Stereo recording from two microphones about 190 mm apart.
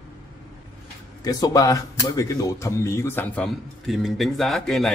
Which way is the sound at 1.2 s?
20° left (ahead or behind).